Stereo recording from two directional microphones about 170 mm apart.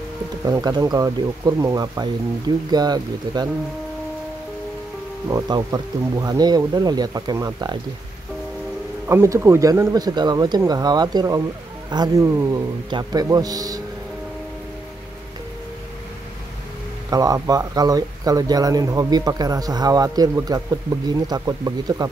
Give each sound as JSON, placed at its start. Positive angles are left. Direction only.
{"t": 0.5, "sound": "speech", "side_deg": -25}
{"t": 5.3, "sound": "speech", "side_deg": -20}
{"t": 9.0, "sound": "speech", "side_deg": -15}
{"t": 17.1, "sound": "speech", "side_deg": -20}